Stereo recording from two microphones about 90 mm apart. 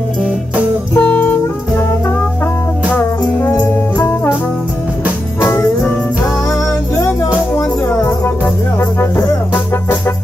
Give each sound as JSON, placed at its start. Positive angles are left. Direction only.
{"t": 0.9, "sound": "music", "side_deg": 20}
{"t": 4.0, "sound": "brass instrument", "side_deg": 20}
{"t": 5.4, "sound": "music", "side_deg": 25}
{"t": 7.5, "sound": "music", "side_deg": 35}